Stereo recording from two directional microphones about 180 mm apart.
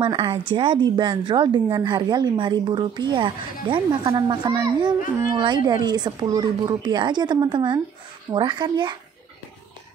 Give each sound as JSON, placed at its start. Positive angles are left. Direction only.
{"t": 0.0, "sound": "a woman's voice", "side_deg": -25}